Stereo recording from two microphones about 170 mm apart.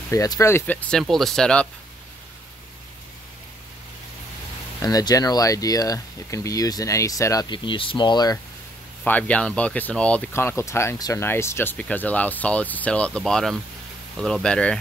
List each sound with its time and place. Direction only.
0.1 s speech: 20° left (ahead or behind)
4.8 s speech: 20° left (ahead or behind)
9.0 s speech: 10° left (ahead or behind)